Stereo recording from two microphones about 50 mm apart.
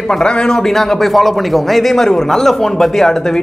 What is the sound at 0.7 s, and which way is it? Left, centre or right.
A man's voice, centre.